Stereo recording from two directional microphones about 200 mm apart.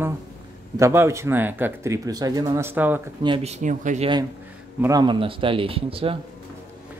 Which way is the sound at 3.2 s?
30° right (ahead or behind).